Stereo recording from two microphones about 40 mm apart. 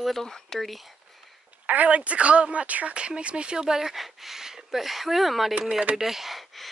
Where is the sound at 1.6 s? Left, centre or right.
Right.